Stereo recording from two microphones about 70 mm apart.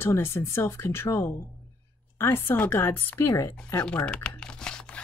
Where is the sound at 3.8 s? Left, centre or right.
Centre.